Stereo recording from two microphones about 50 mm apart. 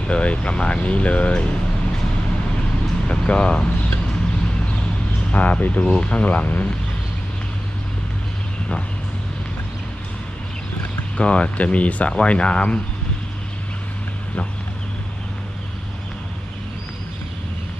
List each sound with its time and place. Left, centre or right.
0.0 s speech: left
3.1 s speech: left
5.3 s speech: left
11.1 s speech: left